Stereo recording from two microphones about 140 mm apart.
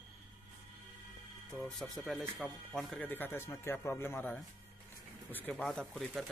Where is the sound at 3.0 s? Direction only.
15° left (ahead or behind).